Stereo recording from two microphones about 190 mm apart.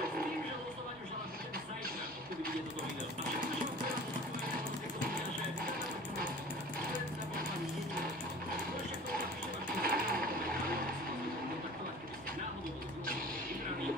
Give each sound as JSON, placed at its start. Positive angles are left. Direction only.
{"t": 9.8, "sound": "sewing machine", "side_deg": -50}